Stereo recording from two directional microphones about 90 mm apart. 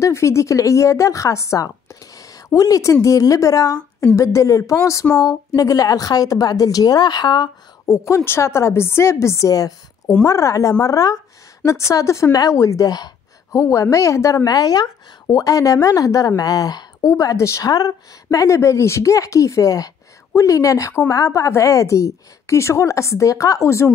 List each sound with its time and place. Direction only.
0.0 s a woman's voice: 30° left (ahead or behind)
5.1 s a woman's voice: 45° left (ahead or behind)
7.8 s a woman's voice: 35° left (ahead or behind)